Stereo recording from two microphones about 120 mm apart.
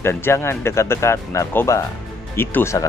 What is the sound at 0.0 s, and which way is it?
Speech, 20° left (ahead or behind).